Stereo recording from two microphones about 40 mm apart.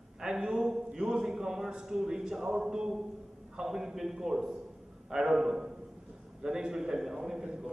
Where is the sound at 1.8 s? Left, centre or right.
Centre.